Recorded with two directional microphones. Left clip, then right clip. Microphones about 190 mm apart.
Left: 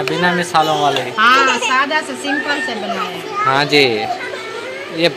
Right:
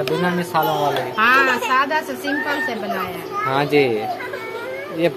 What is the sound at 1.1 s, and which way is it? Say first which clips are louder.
Speech: left 3 dB; 20° right (ahead or behind).